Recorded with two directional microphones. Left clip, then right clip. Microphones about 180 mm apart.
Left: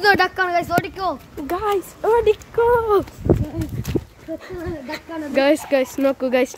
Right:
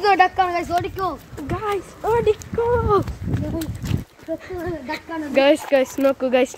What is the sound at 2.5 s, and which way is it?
Speech, 20° left (ahead or behind).